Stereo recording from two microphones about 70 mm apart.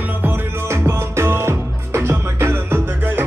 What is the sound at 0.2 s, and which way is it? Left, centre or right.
Music, right.